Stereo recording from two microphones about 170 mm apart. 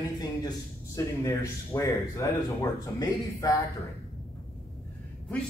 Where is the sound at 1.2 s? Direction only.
20° left (ahead or behind).